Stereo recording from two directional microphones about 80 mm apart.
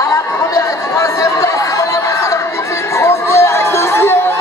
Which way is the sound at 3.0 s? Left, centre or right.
Left.